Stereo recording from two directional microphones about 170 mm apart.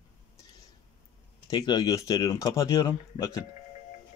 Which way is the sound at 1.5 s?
25° left (ahead or behind).